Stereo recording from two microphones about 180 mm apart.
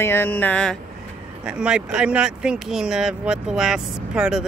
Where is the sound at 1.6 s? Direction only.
5° right (ahead or behind).